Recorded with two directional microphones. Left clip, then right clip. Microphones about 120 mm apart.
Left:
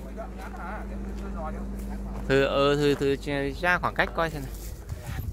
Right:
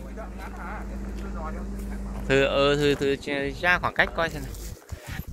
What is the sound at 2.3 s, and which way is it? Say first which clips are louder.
Speech: right 1 dB; 25° left (ahead or behind).